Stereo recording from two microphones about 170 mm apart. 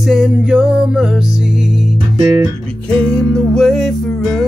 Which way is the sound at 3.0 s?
5° left (ahead or behind).